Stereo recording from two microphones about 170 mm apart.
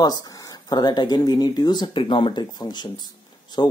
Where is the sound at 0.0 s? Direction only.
20° left (ahead or behind).